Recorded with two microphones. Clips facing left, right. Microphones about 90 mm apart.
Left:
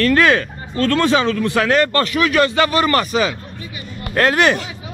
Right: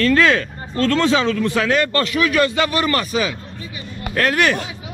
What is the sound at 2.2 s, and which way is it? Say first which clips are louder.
Speech: left 2 dB; 70° left (ahead or behind).